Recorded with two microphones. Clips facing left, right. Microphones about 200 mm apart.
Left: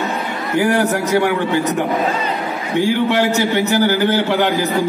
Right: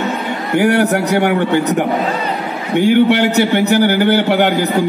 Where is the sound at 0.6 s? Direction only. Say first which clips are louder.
Right 3 dB; 65° right (ahead or behind).